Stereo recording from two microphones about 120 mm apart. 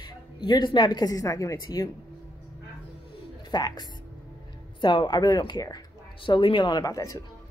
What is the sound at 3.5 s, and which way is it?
Speech, 35° left (ahead or behind).